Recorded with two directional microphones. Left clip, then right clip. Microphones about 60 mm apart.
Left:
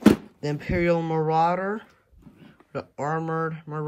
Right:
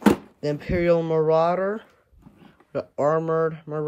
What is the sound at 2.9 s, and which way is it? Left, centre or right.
Speech, right.